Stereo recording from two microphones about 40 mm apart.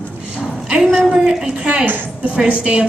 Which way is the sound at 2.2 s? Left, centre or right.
Right.